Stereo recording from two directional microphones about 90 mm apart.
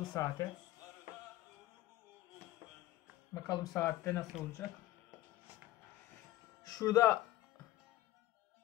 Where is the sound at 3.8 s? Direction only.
30° left (ahead or behind).